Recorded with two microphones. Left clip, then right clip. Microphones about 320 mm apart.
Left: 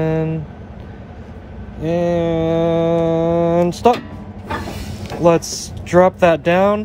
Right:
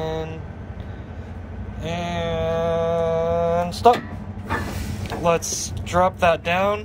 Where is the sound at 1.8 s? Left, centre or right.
Left.